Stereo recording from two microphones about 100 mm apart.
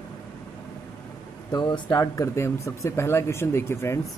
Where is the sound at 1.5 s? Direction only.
45° left (ahead or behind).